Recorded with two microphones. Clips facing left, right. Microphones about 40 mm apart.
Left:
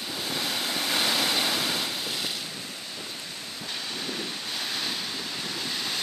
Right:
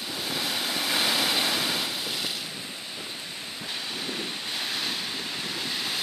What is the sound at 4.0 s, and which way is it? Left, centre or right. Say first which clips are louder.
Waves: right 1 dB; centre.